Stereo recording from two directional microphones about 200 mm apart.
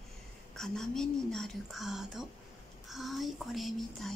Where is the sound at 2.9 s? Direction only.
Centre (ahead or behind).